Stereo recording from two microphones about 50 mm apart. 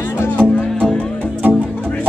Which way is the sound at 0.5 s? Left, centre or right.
Left.